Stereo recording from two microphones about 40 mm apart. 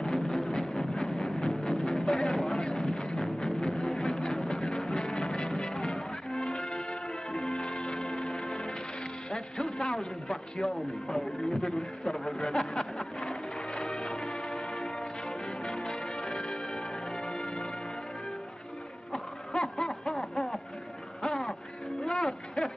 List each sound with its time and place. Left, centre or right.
0.0 s music: centre
2.0 s a sound: centre
2.7 s music: centre
3.8 s a sound: centre
4.4 s music: centre
5.2 s music: left
6.6 s music: centre
9.3 s music: centre
10.2 s speech: centre
12.5 s music: centre
13.9 s music: centre
15.8 s music: left
19.5 s snicker: centre
22.0 s a sound: centre